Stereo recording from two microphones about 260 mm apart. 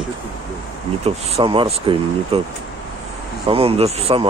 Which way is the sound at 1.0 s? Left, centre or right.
Right.